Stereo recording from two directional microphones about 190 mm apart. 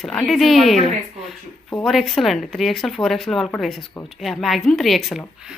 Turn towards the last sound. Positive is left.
turn(degrees=0)  # may be behind; listen again after turning